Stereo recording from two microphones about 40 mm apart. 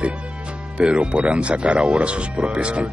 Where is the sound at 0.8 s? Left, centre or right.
Right.